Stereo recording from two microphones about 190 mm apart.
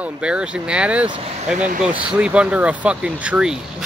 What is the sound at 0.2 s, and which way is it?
Speech, 5° right (ahead or behind).